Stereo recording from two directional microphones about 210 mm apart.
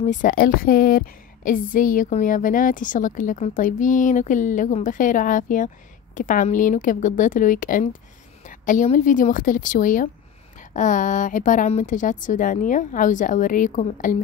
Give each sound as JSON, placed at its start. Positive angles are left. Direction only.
{"t": 0.0, "sound": "a woman's voice", "side_deg": 35}